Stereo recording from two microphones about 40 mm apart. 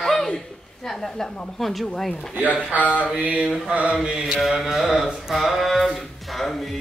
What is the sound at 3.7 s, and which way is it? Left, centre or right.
Mantra, right.